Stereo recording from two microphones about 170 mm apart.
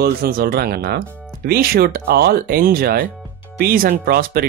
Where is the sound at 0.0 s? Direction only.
65° right (ahead or behind).